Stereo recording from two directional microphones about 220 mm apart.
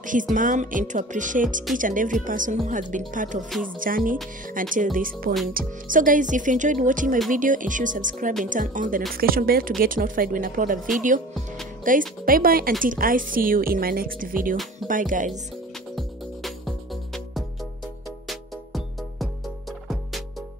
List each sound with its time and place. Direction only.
0.0 s a woman's voice: 35° right (ahead or behind)
11.9 s a woman's voice: 35° right (ahead or behind)
16.0 s music: centre (ahead or behind)